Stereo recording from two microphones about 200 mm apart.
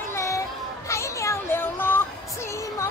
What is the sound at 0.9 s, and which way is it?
Children playing, 15° left (ahead or behind).